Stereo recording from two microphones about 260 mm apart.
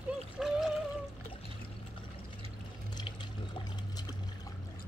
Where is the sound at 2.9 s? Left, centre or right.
Centre.